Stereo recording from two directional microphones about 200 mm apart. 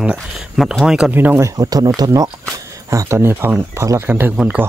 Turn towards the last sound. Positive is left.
turn(degrees=-5)  # may be behind; listen again after turning